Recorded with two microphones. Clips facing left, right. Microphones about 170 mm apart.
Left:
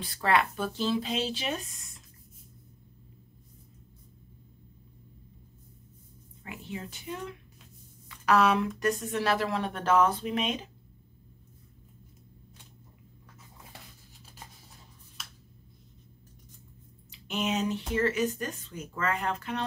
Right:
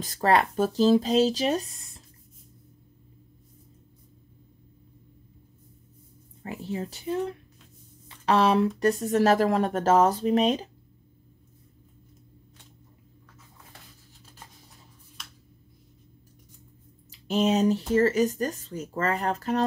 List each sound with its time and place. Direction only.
0.0 s speech: 40° right (ahead or behind)
6.4 s speech: 35° right (ahead or behind)
17.3 s speech: 35° right (ahead or behind)